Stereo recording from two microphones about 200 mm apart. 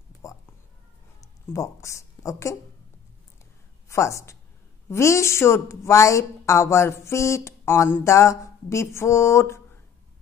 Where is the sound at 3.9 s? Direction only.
15° left (ahead or behind).